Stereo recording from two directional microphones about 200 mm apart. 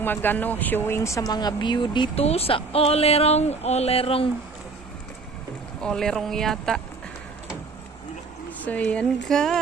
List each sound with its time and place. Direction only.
0.0 s speech: 10° left (ahead or behind); by 4.3 s 30° left (ahead or behind)
5.8 s speech: 5° left (ahead or behind)
8.6 s speech: 5° left (ahead or behind)